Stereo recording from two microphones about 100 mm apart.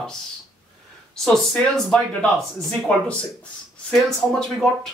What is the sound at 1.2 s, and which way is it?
Speech, 5° left (ahead or behind).